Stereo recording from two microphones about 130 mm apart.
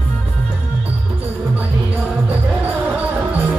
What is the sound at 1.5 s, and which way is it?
Music, 15° right (ahead or behind).